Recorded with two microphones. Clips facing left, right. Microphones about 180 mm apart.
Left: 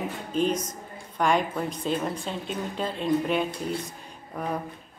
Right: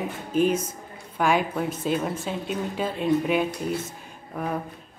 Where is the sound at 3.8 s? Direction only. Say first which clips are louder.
Right 1 dB; centre (ahead or behind).